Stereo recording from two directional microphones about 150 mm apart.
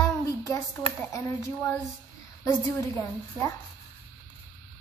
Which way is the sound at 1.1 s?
15° left (ahead or behind).